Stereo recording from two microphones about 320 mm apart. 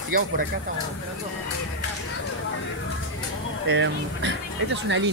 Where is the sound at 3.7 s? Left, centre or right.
Right.